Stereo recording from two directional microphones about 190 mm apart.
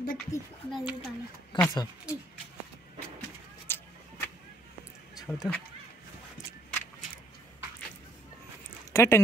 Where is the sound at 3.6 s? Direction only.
10° left (ahead or behind).